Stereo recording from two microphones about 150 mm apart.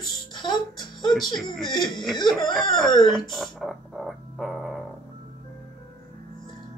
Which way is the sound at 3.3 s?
Centre (ahead or behind).